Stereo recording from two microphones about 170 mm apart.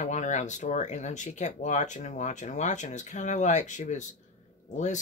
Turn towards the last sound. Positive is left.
turn(degrees=45)  # may be behind; listen again after turning